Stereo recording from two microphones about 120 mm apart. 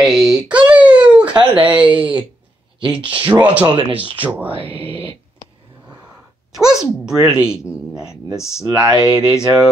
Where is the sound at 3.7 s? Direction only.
45° right (ahead or behind).